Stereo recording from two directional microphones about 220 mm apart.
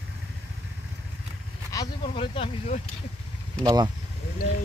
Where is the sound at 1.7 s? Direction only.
25° left (ahead or behind).